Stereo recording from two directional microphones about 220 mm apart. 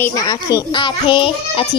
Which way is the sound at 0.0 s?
15° left (ahead or behind).